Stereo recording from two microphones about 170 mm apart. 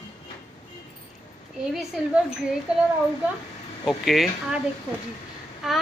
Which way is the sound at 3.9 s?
Centre (ahead or behind).